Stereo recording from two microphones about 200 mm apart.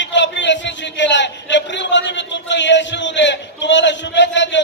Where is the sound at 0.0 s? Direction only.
65° left (ahead or behind).